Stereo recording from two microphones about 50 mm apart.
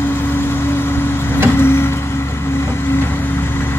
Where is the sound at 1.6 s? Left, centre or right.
Left.